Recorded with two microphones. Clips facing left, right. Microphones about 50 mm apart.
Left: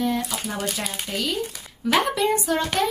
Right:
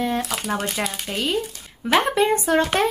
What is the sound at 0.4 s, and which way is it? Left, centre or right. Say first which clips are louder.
Speech: right 4 dB; right.